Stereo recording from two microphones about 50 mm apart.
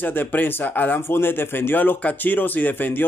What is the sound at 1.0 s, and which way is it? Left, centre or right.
Speech, left.